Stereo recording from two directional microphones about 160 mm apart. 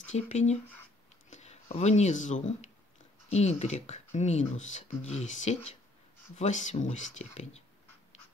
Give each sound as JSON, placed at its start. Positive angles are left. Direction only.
{"t": 0.1, "sound": "speech", "side_deg": 45}